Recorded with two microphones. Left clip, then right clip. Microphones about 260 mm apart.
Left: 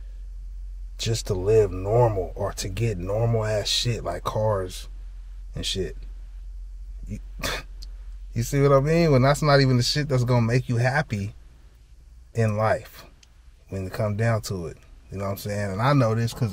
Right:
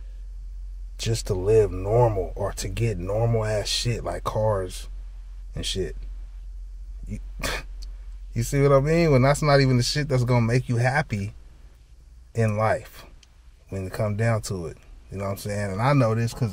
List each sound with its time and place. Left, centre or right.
0.9 s speech: centre
7.1 s speech: centre